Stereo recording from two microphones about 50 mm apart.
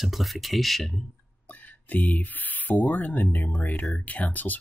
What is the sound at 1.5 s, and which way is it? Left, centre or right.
Speech, left.